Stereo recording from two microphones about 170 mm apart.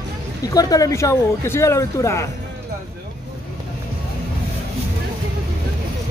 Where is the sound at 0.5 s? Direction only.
20° left (ahead or behind).